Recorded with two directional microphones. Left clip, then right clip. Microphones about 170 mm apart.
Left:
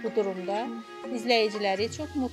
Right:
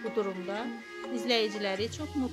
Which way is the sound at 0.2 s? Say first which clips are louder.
Left 5 dB; 10° left (ahead or behind).